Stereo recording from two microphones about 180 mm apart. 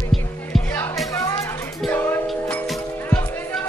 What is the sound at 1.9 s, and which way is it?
Music, 10° left (ahead or behind).